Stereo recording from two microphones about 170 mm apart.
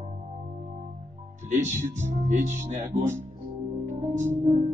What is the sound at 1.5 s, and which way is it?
Speech, 45° right (ahead or behind).